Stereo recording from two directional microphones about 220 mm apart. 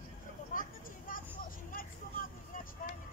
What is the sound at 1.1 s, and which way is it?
Vehicle, 40° left (ahead or behind).